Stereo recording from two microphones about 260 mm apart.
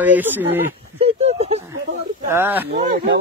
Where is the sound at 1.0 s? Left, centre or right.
Right.